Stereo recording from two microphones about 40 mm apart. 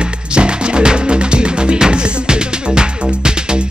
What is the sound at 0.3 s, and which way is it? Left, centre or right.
Music, right.